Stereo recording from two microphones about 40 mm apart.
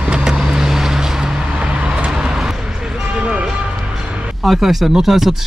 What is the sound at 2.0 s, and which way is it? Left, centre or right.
Vehicle, centre.